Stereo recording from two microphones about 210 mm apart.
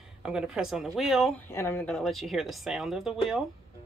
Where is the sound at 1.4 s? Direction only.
10° left (ahead or behind).